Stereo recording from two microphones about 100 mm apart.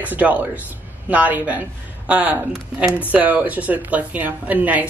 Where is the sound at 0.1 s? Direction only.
15° right (ahead or behind).